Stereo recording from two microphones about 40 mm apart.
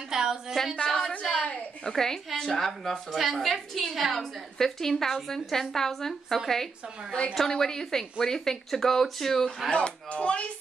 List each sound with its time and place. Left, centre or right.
0.1 s a sound: centre
0.7 s a woman's voice: centre
9.7 s speech: left